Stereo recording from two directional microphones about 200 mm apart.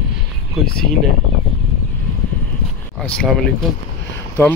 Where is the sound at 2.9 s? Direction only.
5° left (ahead or behind).